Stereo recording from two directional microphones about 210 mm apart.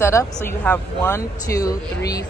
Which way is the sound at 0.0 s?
15° left (ahead or behind).